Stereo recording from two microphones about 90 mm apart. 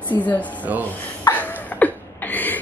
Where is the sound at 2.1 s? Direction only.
20° left (ahead or behind).